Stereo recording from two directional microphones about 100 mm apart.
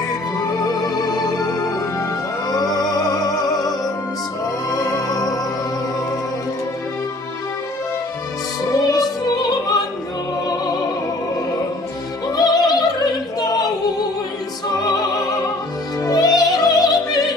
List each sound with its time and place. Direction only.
2.5 s music: 40° left (ahead or behind)
8.7 s opera: 45° left (ahead or behind)
12.3 s music: 40° left (ahead or behind)
13.4 s singing: 40° left (ahead or behind)
16.0 s music: 40° left (ahead or behind)